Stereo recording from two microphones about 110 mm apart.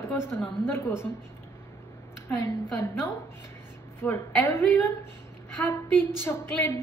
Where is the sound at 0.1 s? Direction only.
20° left (ahead or behind).